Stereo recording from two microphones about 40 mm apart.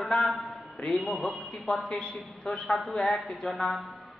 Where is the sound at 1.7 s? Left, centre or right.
Left.